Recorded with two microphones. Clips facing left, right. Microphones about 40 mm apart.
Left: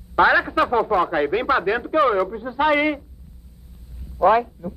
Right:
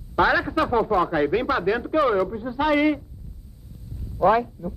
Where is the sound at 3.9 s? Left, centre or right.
Centre.